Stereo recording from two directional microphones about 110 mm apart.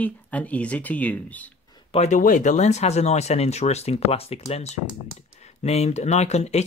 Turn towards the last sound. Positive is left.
turn(degrees=90)